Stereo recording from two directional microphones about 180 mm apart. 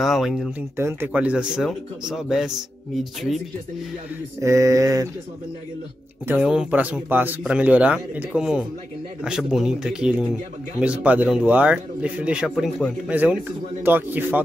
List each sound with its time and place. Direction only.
0.0 s speech: centre (ahead or behind)
0.6 s speech: 15° right (ahead or behind)
4.4 s speech: 15° right (ahead or behind)
6.2 s speech: 5° right (ahead or behind)